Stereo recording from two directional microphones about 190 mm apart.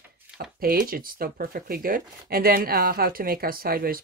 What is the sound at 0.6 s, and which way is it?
Speech, 50° right (ahead or behind).